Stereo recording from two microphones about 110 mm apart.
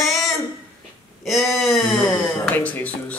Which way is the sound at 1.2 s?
Centre (ahead or behind).